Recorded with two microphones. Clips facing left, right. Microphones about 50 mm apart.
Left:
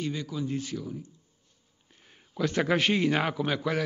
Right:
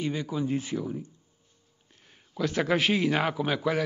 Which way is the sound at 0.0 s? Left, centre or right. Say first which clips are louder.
Right 3 dB; centre.